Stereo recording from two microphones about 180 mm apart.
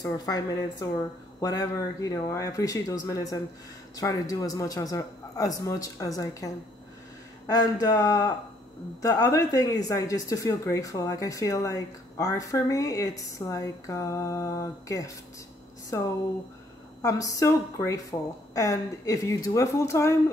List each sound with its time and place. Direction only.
0.0 s speech: 20° left (ahead or behind)